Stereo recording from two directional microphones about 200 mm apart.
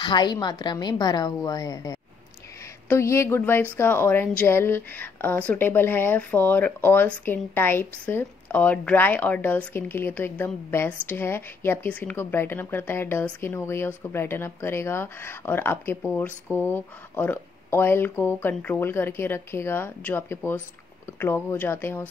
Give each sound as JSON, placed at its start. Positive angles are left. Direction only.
{"t": 0.0, "sound": "a woman's voice", "side_deg": 20}